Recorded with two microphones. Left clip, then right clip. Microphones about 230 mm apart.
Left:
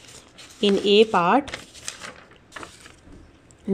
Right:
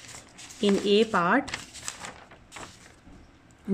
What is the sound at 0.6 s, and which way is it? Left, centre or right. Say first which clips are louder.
Speech: left 6 dB; centre.